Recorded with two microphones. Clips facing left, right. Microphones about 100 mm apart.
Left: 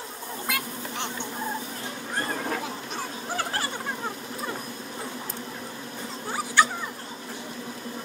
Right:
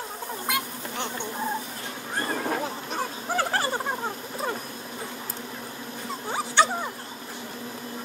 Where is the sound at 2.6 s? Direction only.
40° right (ahead or behind).